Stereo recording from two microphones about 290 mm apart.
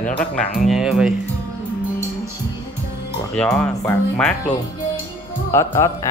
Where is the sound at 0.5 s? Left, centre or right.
Centre.